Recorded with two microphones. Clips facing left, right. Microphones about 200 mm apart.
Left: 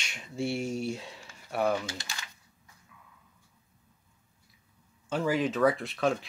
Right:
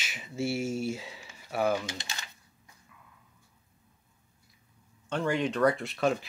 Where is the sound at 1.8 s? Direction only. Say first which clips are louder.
Even; 20° right (ahead or behind).